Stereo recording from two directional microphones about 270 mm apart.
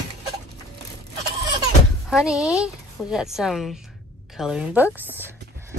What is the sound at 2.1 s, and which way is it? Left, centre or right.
Speech, centre.